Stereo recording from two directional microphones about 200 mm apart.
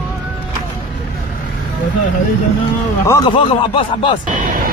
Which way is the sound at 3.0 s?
15° left (ahead or behind).